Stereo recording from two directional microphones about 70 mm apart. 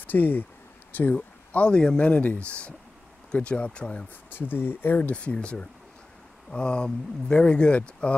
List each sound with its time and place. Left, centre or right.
0.0 s speech: left
1.1 s speech: centre
4.3 s speech: left